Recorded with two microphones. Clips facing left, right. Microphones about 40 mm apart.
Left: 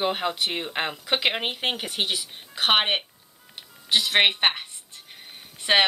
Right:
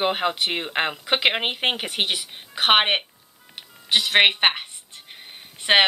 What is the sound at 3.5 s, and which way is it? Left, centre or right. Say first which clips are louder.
Music: right 2 dB; right.